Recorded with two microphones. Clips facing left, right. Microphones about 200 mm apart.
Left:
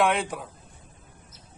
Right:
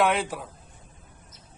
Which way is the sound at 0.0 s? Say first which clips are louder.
Even; centre (ahead or behind).